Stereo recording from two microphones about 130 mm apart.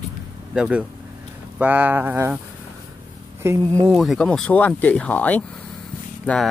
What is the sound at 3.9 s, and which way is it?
Speech, centre (ahead or behind).